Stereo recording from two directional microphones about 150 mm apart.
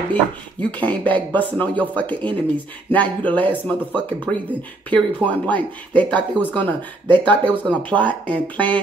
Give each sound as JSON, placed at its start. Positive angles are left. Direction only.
{"t": 0.1, "sound": "speech", "side_deg": 10}